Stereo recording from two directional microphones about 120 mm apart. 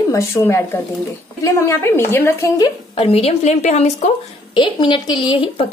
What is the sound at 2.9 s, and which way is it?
A woman's voice, 55° left (ahead or behind).